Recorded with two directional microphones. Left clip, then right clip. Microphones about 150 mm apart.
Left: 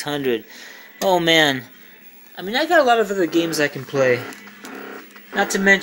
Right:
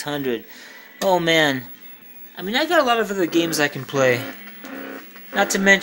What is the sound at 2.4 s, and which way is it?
Speech, 20° right (ahead or behind).